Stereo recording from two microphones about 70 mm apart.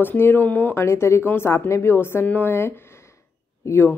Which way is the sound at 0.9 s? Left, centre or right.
Left.